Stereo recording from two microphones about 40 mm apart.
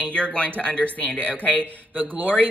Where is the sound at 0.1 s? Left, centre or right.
Left.